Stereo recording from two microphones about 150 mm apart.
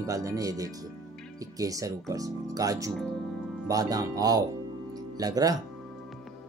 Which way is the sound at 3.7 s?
25° right (ahead or behind).